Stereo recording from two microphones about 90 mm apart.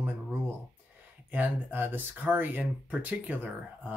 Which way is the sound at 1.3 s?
20° right (ahead or behind).